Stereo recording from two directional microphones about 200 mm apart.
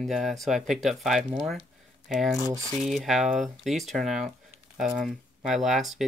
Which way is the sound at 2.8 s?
Centre (ahead or behind).